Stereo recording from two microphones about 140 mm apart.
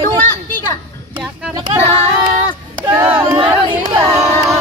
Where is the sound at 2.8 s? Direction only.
30° right (ahead or behind).